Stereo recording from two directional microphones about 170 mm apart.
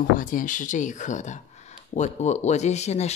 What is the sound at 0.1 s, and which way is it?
Speech, 50° left (ahead or behind).